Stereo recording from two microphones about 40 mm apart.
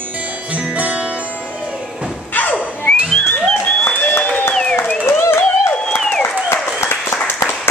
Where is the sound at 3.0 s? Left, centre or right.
Centre.